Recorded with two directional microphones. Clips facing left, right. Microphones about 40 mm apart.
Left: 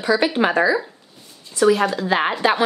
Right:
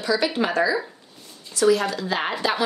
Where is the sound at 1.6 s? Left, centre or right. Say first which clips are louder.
Left 3 dB; left.